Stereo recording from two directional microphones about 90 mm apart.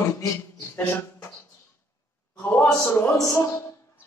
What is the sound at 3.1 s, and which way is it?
Speech, 35° left (ahead or behind).